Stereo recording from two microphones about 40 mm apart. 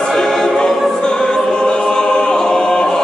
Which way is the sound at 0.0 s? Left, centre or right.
Centre.